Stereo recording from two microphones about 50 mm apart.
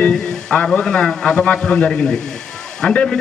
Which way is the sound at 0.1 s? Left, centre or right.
Centre.